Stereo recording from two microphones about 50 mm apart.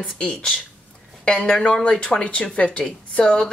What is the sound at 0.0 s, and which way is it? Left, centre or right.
A woman's voice, centre.